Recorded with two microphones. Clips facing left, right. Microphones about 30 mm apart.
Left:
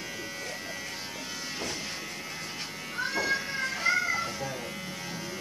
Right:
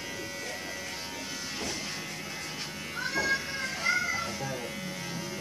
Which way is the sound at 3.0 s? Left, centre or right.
Centre.